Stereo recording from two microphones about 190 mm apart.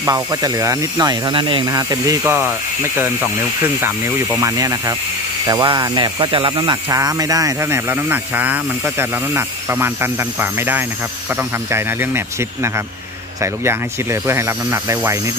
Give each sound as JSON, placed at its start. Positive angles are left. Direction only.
{"t": 0.0, "sound": "speech", "side_deg": -15}
{"t": 4.4, "sound": "speech", "side_deg": -15}
{"t": 14.2, "sound": "speech", "side_deg": -15}